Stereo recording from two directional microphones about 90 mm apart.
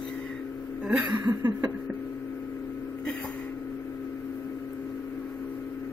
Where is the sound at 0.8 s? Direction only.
15° right (ahead or behind).